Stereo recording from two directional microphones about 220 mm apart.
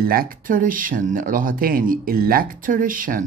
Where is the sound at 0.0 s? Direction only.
40° right (ahead or behind).